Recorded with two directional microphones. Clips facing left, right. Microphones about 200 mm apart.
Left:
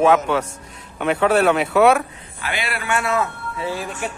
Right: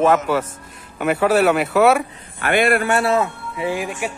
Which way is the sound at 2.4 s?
50° right (ahead or behind).